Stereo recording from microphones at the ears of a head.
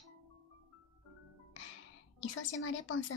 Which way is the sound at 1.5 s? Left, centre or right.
Left.